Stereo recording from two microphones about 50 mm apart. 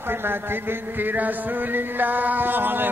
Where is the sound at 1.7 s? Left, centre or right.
Right.